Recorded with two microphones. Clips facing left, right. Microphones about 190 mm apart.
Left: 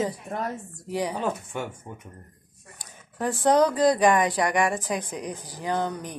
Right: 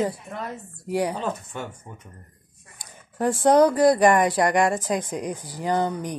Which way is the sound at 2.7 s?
15° right (ahead or behind).